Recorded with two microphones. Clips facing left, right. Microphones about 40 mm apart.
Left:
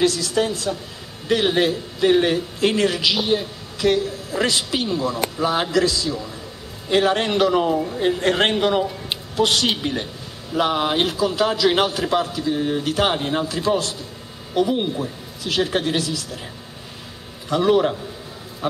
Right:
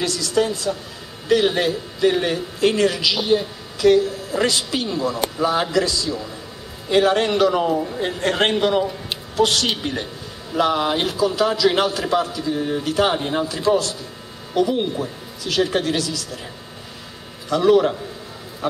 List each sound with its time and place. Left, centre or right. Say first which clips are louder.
0.0 s a man's voice: left 1 dB; left; by 2.4 s centre
2.6 s a man's voice: right 2 dB; left
4.8 s a man's voice: even; centre
5.7 s a man's voice: left 1 dB; centre; by 13.1 s left
13.1 s a man's voice: even; centre
17.5 s a man's voice: right 2 dB; centre